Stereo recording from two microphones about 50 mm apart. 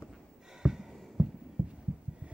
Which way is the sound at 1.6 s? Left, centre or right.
Right.